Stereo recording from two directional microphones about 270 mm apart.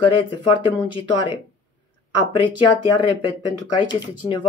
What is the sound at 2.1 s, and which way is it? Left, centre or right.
Speech, centre.